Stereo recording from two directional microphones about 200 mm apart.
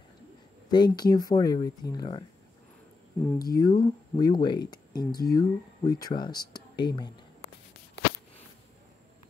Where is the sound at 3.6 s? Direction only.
20° left (ahead or behind).